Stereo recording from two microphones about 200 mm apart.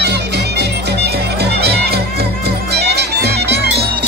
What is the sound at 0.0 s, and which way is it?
Music, 55° right (ahead or behind).